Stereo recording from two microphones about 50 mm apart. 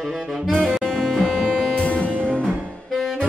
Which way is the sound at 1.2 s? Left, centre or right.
Centre.